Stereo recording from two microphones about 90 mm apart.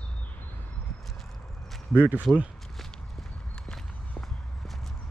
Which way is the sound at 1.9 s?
20° right (ahead or behind).